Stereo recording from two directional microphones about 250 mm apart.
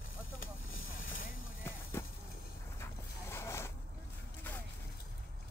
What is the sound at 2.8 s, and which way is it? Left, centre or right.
Zipper, centre.